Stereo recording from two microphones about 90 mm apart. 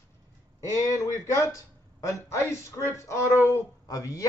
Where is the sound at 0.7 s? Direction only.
35° left (ahead or behind).